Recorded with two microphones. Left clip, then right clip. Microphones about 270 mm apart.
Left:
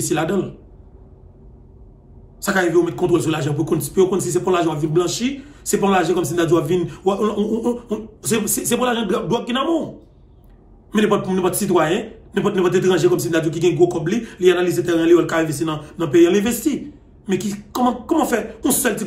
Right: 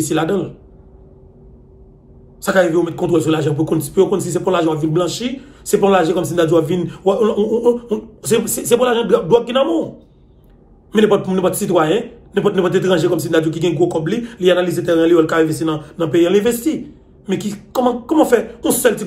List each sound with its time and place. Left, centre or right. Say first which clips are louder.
0.0 s a man's voice: right 3 dB; centre
2.4 s a man's voice: right 3 dB; centre
10.9 s a man's voice: right 4 dB; centre